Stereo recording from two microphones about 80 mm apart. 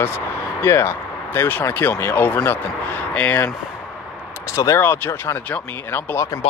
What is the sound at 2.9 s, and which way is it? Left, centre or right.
Speech, centre.